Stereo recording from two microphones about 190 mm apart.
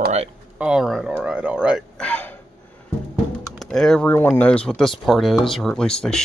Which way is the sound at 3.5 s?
5° left (ahead or behind).